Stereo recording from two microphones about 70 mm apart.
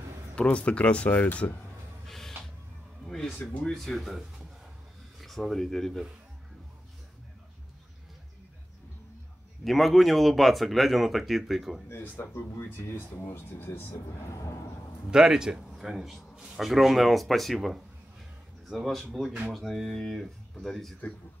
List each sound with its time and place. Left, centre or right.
0.4 s speech: centre
2.0 s a sound: centre
3.3 s speech: left
3.7 s a man's voice: centre
9.7 s a man's voice: centre
11.9 s speech: left
15.0 s a man's voice: centre